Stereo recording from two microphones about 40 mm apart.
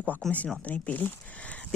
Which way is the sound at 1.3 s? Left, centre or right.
Left.